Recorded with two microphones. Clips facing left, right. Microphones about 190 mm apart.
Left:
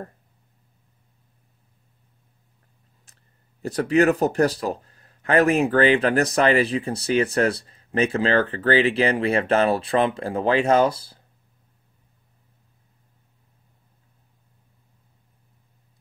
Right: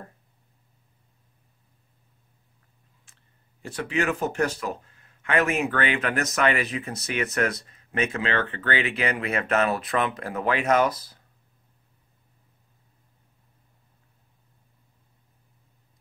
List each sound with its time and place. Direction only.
3.1 s clicking: 40° left (ahead or behind)
3.6 s speech: 40° left (ahead or behind)